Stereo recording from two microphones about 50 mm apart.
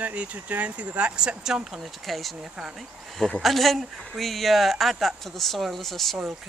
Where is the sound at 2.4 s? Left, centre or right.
Centre.